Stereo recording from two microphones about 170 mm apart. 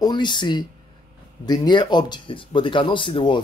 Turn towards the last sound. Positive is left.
turn(degrees=30)  # may be behind; listen again after turning